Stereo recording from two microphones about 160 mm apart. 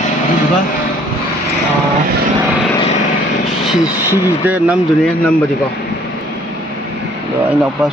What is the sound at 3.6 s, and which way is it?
Speech, 5° right (ahead or behind).